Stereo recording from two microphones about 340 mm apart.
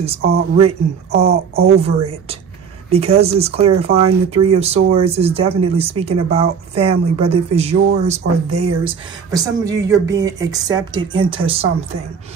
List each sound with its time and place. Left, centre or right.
0.0 s speech: centre